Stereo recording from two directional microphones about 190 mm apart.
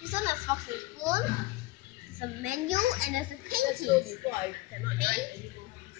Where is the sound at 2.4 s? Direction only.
40° right (ahead or behind).